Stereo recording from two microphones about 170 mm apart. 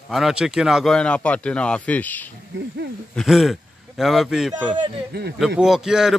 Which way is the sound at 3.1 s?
Centre (ahead or behind).